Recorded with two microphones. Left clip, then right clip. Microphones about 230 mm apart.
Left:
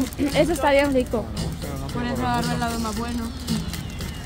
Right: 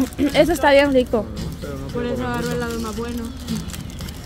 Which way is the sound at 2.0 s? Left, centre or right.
Centre.